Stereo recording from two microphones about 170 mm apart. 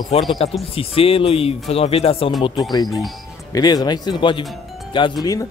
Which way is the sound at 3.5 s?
20° left (ahead or behind).